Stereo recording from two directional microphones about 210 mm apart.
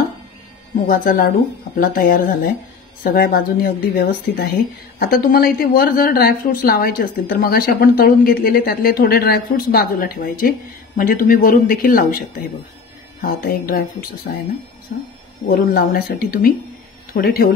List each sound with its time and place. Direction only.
0.8 s speech: 40° left (ahead or behind)
15.4 s speech: 45° left (ahead or behind)